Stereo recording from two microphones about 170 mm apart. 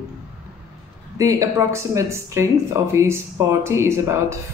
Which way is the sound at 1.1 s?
20° right (ahead or behind).